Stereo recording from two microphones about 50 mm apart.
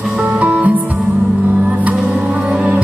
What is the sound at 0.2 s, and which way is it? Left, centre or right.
Music, right.